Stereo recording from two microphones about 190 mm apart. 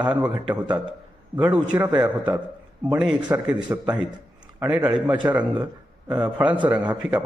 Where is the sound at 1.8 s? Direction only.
20° right (ahead or behind).